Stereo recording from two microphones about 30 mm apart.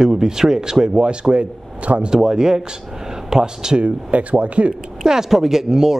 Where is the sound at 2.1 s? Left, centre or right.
Right.